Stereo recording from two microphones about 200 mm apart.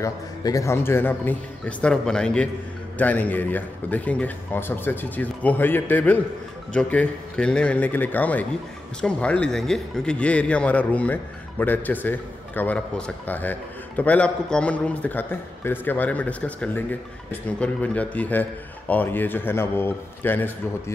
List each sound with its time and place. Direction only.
0.0 s a man's voice: 15° left (ahead or behind)